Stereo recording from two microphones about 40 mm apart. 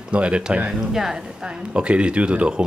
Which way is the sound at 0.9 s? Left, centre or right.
Centre.